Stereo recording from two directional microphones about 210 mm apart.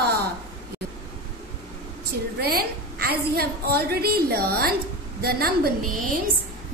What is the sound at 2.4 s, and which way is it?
A woman's voice, 45° right (ahead or behind).